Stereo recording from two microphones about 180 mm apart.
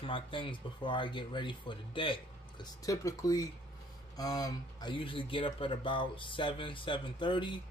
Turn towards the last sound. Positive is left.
turn(degrees=25)  # may be behind; listen again after turning